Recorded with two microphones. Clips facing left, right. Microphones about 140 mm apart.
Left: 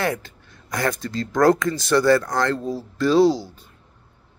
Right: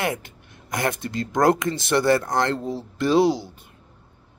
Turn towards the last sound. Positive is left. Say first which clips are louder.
# left 2 dB
turn(degrees=-20)  # may be behind; listen again after turning